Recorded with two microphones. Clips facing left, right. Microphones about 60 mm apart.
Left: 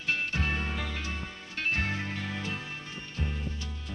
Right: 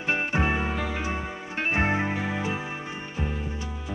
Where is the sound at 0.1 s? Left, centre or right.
Right.